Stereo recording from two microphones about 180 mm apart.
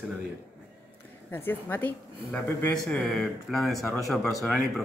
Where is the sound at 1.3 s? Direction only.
10° left (ahead or behind).